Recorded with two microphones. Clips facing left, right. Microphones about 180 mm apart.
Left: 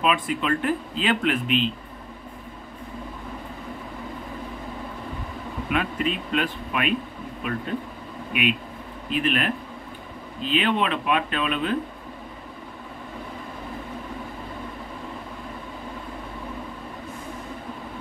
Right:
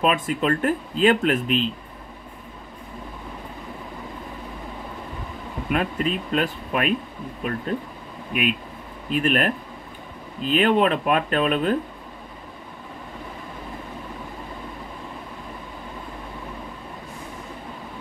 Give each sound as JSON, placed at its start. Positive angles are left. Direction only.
{"t": 0.0, "sound": "speech", "side_deg": -45}
{"t": 5.7, "sound": "speech", "side_deg": -40}
{"t": 8.3, "sound": "speech", "side_deg": -45}